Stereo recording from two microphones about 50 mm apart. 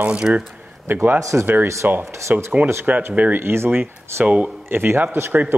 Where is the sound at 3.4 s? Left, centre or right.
Right.